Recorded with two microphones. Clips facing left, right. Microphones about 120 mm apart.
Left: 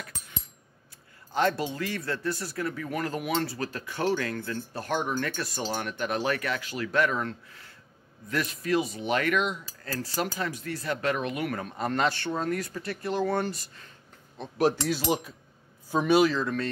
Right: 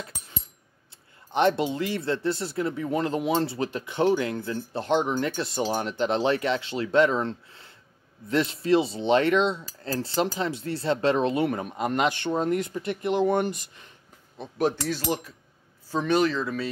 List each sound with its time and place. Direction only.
1.3 s speech: 20° right (ahead or behind)
14.4 s speech: 5° left (ahead or behind)
15.1 s speech: 15° left (ahead or behind); by 16.6 s centre (ahead or behind)